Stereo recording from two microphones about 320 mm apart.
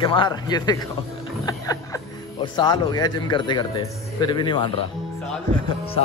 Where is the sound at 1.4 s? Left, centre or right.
Centre.